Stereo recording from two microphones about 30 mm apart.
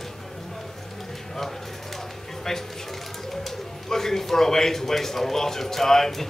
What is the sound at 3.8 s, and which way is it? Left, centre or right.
A man's voice, centre.